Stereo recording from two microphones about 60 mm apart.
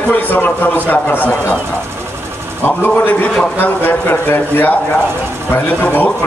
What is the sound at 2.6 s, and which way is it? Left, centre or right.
A man's voice, left.